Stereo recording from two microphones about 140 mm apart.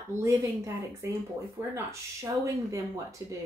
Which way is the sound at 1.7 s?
20° right (ahead or behind).